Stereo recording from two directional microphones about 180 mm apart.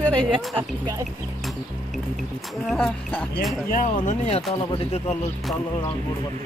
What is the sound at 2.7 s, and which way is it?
Speech, 5° left (ahead or behind).